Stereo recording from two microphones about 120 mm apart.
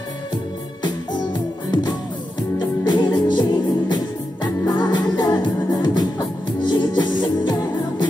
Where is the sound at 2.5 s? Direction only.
40° left (ahead or behind).